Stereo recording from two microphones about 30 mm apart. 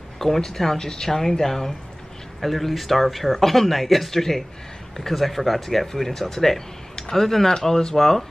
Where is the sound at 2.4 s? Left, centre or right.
Centre.